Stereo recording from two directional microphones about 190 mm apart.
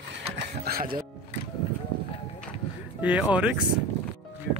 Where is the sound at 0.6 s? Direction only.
50° right (ahead or behind).